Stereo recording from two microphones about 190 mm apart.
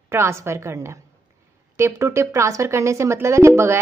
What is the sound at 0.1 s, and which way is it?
Speech, 15° right (ahead or behind).